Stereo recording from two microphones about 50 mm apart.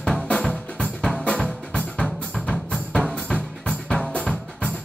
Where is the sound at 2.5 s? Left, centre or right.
Centre.